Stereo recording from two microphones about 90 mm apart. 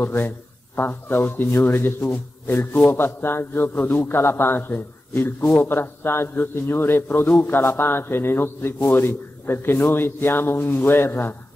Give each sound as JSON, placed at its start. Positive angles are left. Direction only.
{"t": 0.0, "sound": "a man's voice", "side_deg": 25}